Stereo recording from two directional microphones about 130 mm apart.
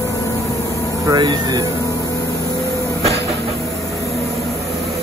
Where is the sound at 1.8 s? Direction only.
25° left (ahead or behind).